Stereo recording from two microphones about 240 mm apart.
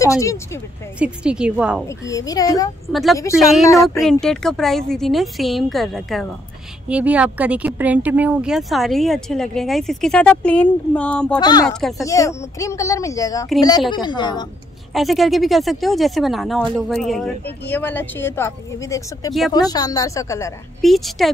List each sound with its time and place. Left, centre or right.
0.0 s speech: centre
0.9 s speech: centre
1.9 s speech: centre
2.9 s speech: centre
3.6 s speech: centre
4.0 s speech: centre
11.3 s speech: centre
15.0 s speech: centre
20.8 s speech: centre